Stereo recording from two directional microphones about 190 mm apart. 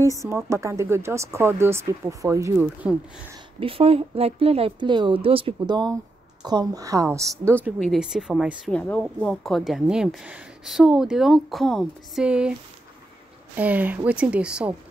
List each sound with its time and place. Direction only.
0.2 s speech: 15° right (ahead or behind)
3.5 s speech: 30° right (ahead or behind)
7.8 s a woman's voice: centre (ahead or behind)
8.7 s a woman's voice: 5° left (ahead or behind)
13.6 s speech: 10° right (ahead or behind)